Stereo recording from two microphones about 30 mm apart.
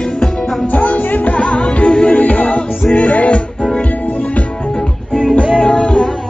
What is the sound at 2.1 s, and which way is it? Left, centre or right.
Music, left.